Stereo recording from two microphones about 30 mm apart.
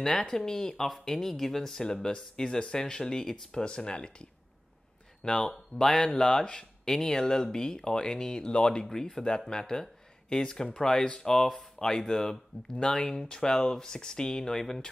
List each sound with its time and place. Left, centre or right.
0.0 s speech: centre; by 4.3 s left
5.2 s speech: left
8.8 s speech: centre